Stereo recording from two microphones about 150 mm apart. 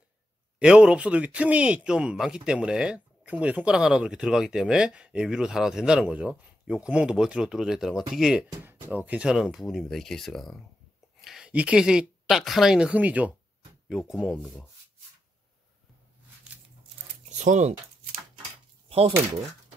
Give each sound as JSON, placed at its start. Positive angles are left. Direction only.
{"t": 0.6, "sound": "speech", "side_deg": -5}
{"t": 17.4, "sound": "speech", "side_deg": -50}
{"t": 18.9, "sound": "speech", "side_deg": -40}